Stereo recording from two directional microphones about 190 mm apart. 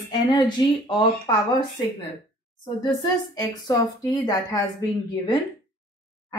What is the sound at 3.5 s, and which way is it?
Speech, 20° left (ahead or behind).